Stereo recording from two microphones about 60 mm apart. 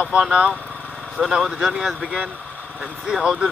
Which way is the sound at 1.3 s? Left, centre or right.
Centre.